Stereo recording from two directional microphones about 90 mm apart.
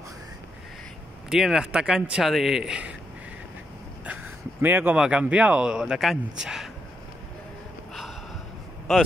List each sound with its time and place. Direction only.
1.3 s speech: 5° right (ahead or behind)
4.0 s a sound: 20° right (ahead or behind)
5.0 s speech: 15° right (ahead or behind)
8.9 s speech: centre (ahead or behind)